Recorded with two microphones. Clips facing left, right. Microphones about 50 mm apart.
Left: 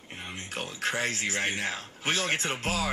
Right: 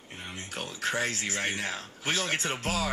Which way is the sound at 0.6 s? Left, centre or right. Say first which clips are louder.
Even; left.